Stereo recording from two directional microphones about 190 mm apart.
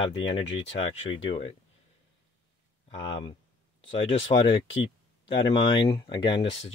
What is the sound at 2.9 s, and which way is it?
Speech, 25° left (ahead or behind).